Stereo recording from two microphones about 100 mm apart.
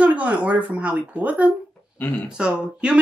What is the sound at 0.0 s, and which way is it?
Speech, 15° right (ahead or behind).